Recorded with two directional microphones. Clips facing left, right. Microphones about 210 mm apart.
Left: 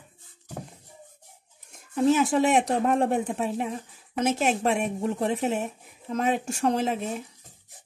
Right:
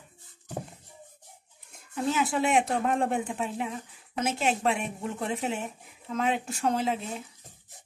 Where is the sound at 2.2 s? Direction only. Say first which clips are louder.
Left 4 dB; 40° left (ahead or behind).